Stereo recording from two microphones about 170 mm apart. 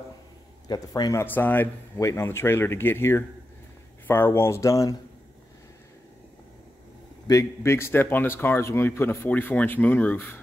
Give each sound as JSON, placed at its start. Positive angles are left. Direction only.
{"t": 0.7, "sound": "a man's voice", "side_deg": 25}
{"t": 1.2, "sound": "speech", "side_deg": 10}
{"t": 7.2, "sound": "speech", "side_deg": 20}